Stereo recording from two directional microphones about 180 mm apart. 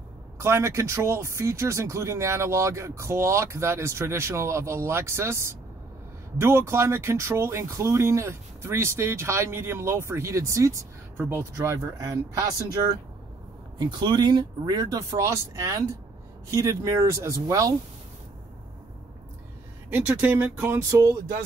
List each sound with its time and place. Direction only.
0.4 s speech: 15° right (ahead or behind)
19.9 s speech: 10° right (ahead or behind)